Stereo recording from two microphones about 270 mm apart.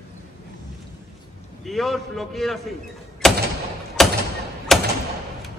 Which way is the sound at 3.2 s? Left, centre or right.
Centre.